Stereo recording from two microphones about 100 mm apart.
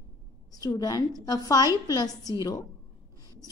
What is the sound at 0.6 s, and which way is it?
A woman's voice, 40° left (ahead or behind).